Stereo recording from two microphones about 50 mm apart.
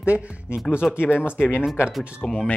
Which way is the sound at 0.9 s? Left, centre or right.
Left.